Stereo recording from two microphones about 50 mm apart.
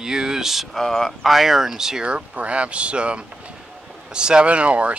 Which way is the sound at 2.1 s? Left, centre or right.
Right.